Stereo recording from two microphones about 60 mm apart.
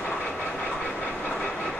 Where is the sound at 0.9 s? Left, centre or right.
Left.